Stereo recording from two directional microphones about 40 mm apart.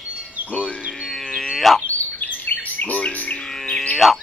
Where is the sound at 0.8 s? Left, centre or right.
Centre.